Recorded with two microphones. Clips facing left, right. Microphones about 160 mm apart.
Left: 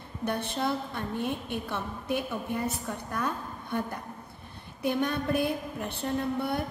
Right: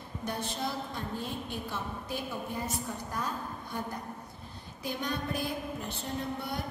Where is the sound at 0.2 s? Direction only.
60° left (ahead or behind).